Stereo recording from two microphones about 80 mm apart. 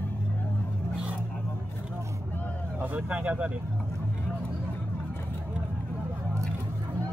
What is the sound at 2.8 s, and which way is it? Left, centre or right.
Speech, centre.